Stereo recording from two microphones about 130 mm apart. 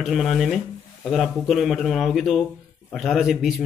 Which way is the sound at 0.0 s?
Centre (ahead or behind).